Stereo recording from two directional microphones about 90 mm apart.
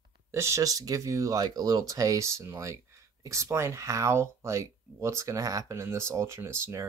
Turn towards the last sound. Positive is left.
turn(degrees=-30)  # may be behind; listen again after turning